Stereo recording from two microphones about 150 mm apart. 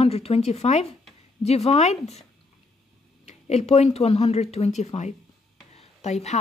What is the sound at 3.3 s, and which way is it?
A woman's voice, 45° left (ahead or behind).